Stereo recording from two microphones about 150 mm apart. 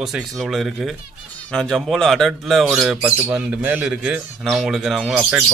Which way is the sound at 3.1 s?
15° right (ahead or behind).